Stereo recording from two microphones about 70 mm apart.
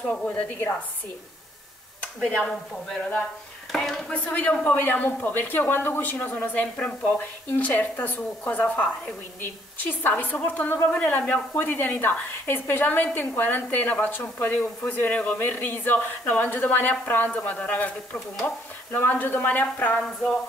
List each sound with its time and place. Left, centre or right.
0.0 s speech: centre
2.2 s speech: centre
4.1 s speech: left
18.4 s speech: left